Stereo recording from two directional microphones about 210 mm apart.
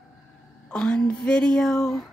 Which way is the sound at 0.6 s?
5° left (ahead or behind).